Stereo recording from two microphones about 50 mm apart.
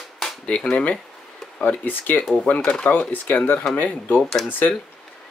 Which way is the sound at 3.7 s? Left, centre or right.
Left.